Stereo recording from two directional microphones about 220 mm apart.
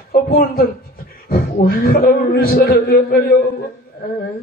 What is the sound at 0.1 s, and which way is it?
A man's voice, 45° left (ahead or behind).